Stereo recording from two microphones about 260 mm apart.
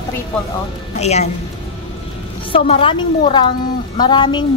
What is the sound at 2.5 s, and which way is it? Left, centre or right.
A woman's voice, left.